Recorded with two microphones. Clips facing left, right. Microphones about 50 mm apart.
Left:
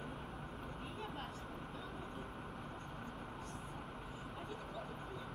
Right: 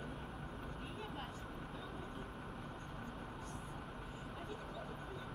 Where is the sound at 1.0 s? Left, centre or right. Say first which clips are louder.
Left 2 dB; centre.